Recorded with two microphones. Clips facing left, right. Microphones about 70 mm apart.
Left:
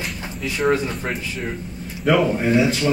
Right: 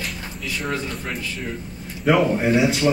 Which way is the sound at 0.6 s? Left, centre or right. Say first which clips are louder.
Left 9 dB; left.